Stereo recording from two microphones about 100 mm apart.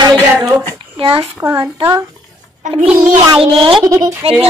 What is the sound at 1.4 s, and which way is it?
Child singing, 25° right (ahead or behind).